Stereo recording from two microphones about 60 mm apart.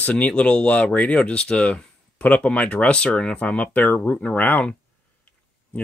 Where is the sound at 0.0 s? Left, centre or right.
Left.